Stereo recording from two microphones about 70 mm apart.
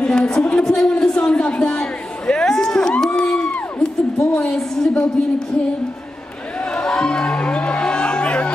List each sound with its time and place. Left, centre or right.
0.0 s speech: centre
0.7 s a sound: centre
4.2 s a woman's voice: centre
6.8 s music: centre